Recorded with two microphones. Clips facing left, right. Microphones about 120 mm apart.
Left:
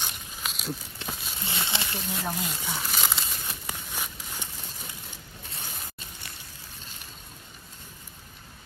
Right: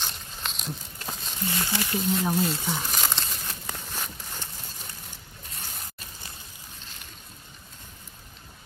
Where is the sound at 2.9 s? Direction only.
5° left (ahead or behind).